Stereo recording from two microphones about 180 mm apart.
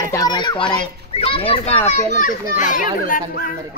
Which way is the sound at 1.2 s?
30° left (ahead or behind).